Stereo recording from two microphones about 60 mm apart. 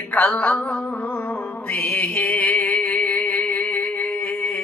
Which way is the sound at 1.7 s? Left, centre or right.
Left.